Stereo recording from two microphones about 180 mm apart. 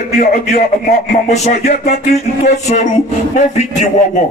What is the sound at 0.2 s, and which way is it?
A man's voice, 45° left (ahead or behind).